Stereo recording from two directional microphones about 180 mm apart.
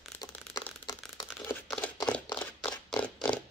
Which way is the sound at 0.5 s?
20° left (ahead or behind).